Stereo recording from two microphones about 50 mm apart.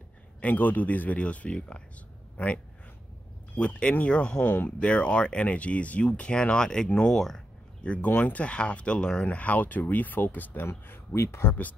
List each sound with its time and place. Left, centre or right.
0.4 s speech: left; by 7.4 s centre
8.0 s speech: left
10.7 s speech: left